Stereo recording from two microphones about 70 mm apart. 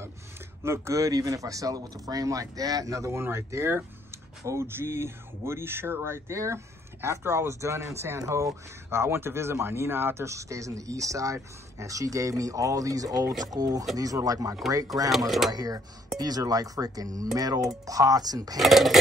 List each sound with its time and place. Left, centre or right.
0.7 s speech: right
15.0 s speech: centre
15.5 s speech: right
18.6 s speech: centre